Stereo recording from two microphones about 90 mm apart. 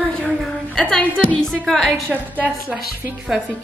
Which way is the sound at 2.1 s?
20° right (ahead or behind).